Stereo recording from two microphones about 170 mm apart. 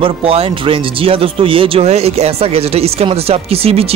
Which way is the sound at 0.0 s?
35° right (ahead or behind).